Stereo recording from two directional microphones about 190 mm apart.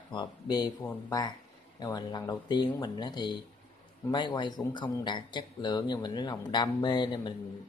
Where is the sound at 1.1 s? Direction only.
20° left (ahead or behind).